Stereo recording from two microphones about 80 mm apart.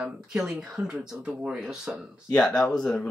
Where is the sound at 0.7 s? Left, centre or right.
Centre.